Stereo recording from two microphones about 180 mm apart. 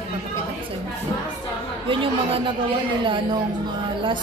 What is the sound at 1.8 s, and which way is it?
Speech, 30° right (ahead or behind).